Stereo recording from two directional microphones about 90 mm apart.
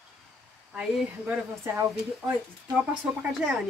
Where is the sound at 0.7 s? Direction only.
10° right (ahead or behind).